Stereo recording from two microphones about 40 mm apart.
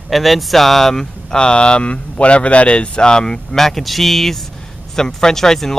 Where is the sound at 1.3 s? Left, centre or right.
Left; by 4.4 s centre.